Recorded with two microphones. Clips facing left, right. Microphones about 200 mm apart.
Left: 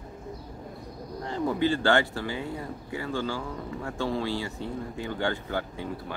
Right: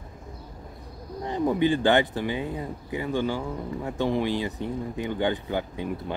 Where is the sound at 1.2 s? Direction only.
15° right (ahead or behind).